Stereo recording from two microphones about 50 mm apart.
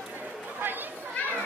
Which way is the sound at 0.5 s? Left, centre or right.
Right.